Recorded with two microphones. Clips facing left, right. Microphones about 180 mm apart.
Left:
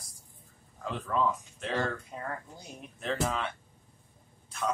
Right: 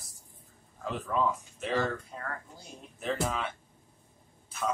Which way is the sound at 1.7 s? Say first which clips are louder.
Right 2 dB; 15° left (ahead or behind).